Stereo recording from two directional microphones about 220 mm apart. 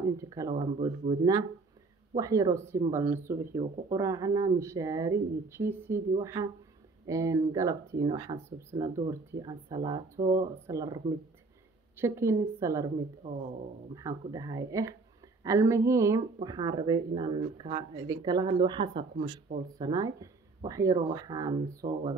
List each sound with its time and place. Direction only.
0.0 s speech: 15° right (ahead or behind)
13.9 s speech: 15° right (ahead or behind)